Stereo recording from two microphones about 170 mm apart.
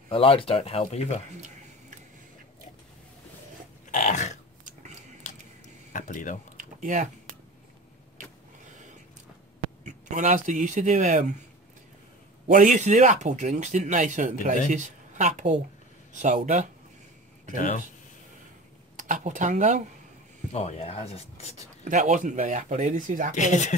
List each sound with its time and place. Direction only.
0.1 s speech: 30° left (ahead or behind)
3.9 s dog: 45° left (ahead or behind)
5.9 s speech: 50° left (ahead or behind)
6.5 s a sound: 50° right (ahead or behind)
8.2 s vehicle: 45° right (ahead or behind)
9.8 s speech: 45° right (ahead or behind)
12.4 s speech: 50° right (ahead or behind)
17.6 s speech: 50° left (ahead or behind)
18.9 s speech: 50° right (ahead or behind)
20.5 s speech: 35° left (ahead or behind)
21.8 s speech: 45° right (ahead or behind)
23.3 s speech: 45° left (ahead or behind)